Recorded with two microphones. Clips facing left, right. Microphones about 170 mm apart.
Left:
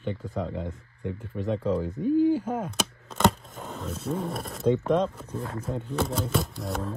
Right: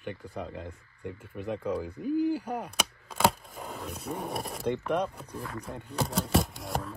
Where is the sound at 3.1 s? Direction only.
5° right (ahead or behind).